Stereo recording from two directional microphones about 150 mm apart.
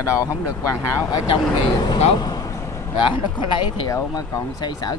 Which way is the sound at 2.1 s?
25° left (ahead or behind).